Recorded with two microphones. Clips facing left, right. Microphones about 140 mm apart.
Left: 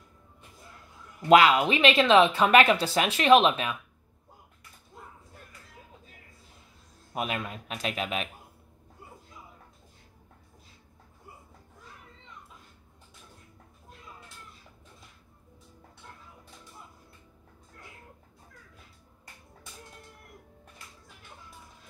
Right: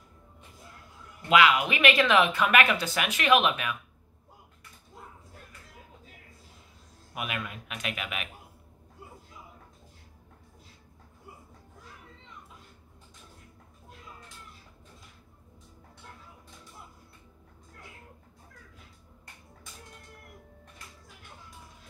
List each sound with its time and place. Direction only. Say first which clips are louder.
1.3 s speech: left 4 dB; 35° left (ahead or behind)
7.2 s a man's voice: left 4 dB; 35° left (ahead or behind)